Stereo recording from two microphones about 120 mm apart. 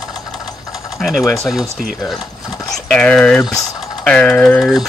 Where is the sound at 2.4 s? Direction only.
30° left (ahead or behind).